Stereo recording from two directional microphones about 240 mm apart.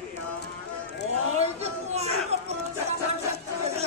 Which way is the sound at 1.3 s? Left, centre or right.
Right.